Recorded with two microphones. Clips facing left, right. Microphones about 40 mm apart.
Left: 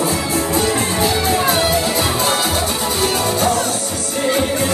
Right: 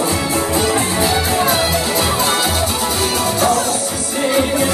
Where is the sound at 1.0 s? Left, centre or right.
Centre.